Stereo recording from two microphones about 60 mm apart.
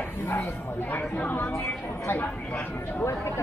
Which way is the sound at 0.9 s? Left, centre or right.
Left.